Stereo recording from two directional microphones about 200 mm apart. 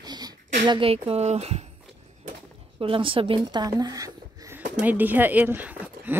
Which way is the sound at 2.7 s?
25° right (ahead or behind).